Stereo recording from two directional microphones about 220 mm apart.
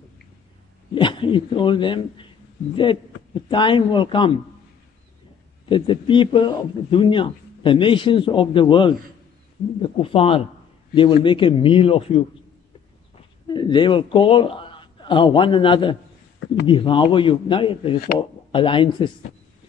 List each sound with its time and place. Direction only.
0.9 s a man's voice: 20° left (ahead or behind)
5.7 s a man's voice: 20° left (ahead or behind)
13.5 s a man's voice: 20° left (ahead or behind)